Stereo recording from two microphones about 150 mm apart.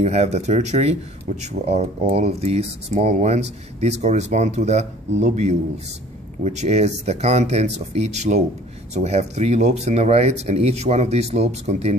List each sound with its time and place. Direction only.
0.0 s speech: 45° right (ahead or behind)